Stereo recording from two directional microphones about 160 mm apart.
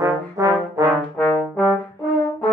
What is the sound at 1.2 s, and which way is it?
Brass instrument, 5° left (ahead or behind).